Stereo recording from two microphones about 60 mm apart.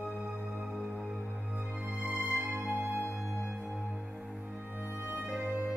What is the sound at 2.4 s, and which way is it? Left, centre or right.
Music, right.